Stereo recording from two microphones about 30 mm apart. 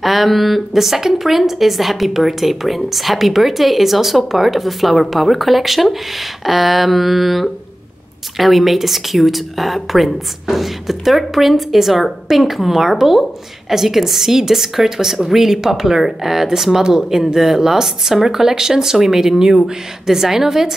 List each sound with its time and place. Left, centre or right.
0.0 s a woman's voice: centre